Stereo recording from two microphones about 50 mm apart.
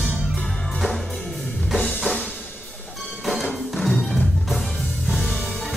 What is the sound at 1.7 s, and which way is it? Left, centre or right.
Drum kit, centre.